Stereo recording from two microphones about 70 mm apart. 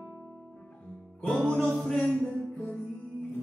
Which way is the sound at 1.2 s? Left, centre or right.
Centre.